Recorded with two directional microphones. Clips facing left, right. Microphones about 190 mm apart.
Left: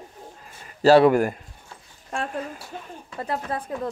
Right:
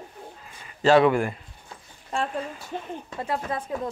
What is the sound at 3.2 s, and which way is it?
Speech, 35° left (ahead or behind).